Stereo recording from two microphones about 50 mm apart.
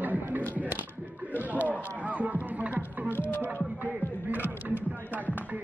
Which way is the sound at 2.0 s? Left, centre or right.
Right.